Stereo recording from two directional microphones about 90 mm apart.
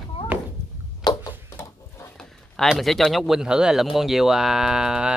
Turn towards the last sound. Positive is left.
turn(degrees=-5)  # may be behind; listen again after turning